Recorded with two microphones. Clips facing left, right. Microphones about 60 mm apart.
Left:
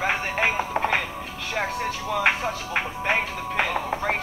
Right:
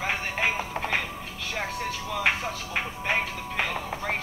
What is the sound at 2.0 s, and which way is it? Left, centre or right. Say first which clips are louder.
Music: left 4 dB; left.